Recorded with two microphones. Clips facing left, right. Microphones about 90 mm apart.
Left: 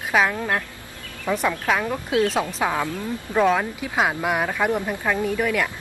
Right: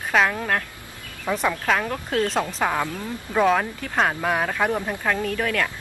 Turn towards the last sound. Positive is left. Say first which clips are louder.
# left 2 dB
turn(degrees=10)  # may be behind; listen again after turning